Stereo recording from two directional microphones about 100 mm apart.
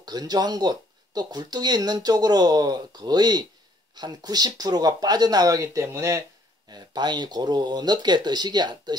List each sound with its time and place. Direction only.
0.0 s speech: 45° right (ahead or behind)
6.7 s speech: 45° right (ahead or behind)